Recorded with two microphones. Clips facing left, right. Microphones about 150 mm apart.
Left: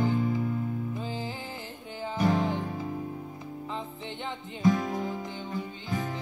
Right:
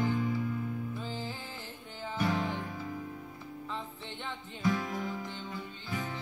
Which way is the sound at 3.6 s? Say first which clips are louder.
Left 4 dB; 15° left (ahead or behind).